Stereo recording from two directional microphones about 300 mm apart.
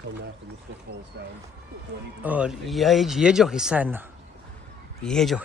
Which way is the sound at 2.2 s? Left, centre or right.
Centre.